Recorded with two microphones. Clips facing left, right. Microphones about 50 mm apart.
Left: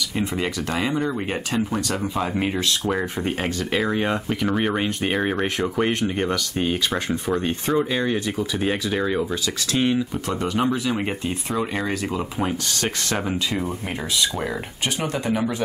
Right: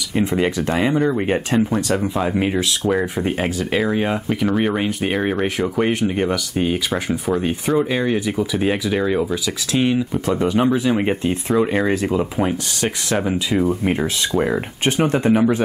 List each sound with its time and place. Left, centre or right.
0.1 s speech: right